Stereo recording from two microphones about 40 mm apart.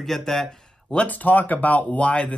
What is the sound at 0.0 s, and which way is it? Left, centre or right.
Speech, centre.